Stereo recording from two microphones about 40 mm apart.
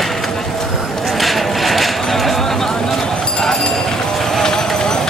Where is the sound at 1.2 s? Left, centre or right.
Centre.